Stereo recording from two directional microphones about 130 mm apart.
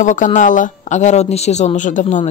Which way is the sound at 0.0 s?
75° left (ahead or behind).